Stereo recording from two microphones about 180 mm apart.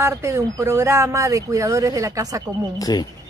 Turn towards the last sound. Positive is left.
turn(degrees=20)  # may be behind; listen again after turning